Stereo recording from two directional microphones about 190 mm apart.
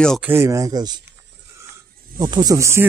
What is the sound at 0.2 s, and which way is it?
Speech, 15° right (ahead or behind).